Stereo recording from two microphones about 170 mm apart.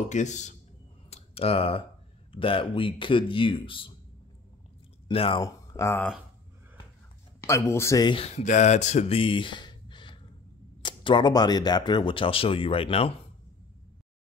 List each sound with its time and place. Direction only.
0.1 s speech: 45° left (ahead or behind)
1.1 s a sound: 35° left (ahead or behind)
2.3 s speech: 30° left (ahead or behind)
5.0 s speech: 30° left (ahead or behind)
5.4 s speech: 20° left (ahead or behind)
7.3 s speech: 15° left (ahead or behind); by 13.1 s 35° left (ahead or behind)